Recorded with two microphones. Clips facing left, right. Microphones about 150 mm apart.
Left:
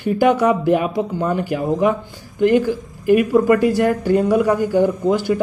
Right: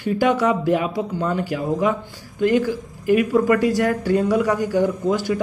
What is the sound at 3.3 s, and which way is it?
Speech, 20° left (ahead or behind).